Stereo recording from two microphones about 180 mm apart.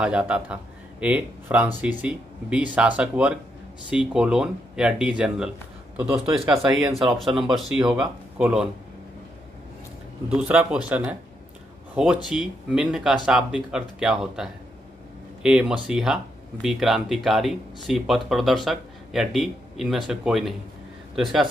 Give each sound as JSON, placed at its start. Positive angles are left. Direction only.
{"t": 0.0, "sound": "speech", "side_deg": -5}
{"t": 5.9, "sound": "speech", "side_deg": -15}
{"t": 7.0, "sound": "speech", "side_deg": 0}
{"t": 10.3, "sound": "speech", "side_deg": -5}